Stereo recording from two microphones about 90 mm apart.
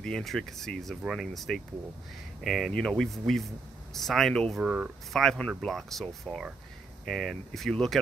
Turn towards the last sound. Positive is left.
turn(degrees=5)  # may be behind; listen again after turning